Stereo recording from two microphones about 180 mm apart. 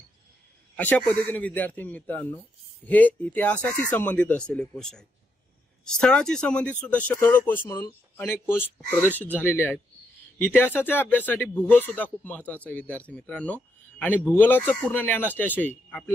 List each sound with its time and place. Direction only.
0.7 s speech: 10° left (ahead or behind)